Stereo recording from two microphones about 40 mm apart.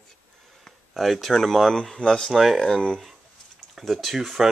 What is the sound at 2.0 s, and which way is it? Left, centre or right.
Speech, left.